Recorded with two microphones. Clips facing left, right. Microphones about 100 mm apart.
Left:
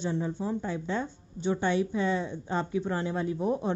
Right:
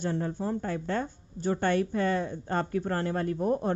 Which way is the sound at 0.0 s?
50° right (ahead or behind).